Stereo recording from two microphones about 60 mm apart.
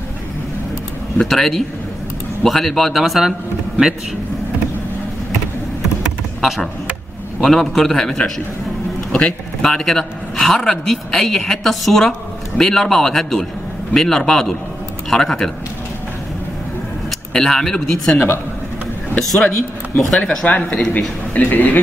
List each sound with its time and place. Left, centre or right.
1.1 s a man's voice: centre
6.4 s a man's voice: centre
17.3 s a man's voice: centre; by 21.7 s left